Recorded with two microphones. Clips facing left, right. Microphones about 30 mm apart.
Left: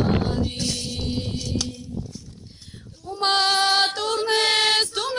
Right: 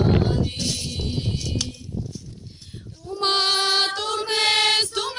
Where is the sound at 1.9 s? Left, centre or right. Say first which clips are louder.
Right 4 dB; left.